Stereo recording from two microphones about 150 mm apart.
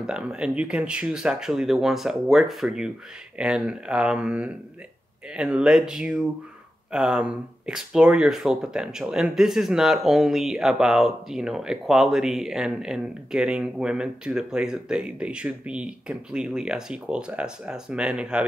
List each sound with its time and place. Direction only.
0.0 s speech: 5° right (ahead or behind)